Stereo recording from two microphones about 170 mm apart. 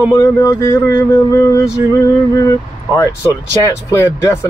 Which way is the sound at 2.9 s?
15° left (ahead or behind).